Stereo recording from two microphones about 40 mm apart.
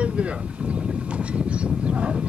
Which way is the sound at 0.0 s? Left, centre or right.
Right.